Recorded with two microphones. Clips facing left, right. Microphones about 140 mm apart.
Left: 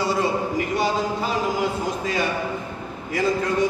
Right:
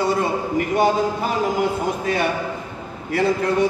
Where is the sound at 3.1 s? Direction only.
65° right (ahead or behind).